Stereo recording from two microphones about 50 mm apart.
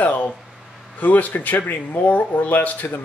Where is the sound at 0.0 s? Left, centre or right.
Left.